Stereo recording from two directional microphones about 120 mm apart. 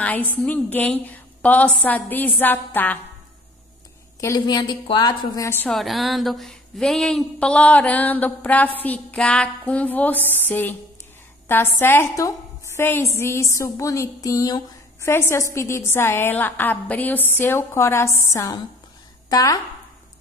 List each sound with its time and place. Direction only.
0.0 s speech: 15° left (ahead or behind)
4.2 s a woman's voice: 30° left (ahead or behind)
5.7 s a woman's voice: centre (ahead or behind); by 19.6 s 30° left (ahead or behind)